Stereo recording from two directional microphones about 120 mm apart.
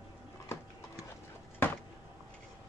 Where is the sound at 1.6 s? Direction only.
20° left (ahead or behind).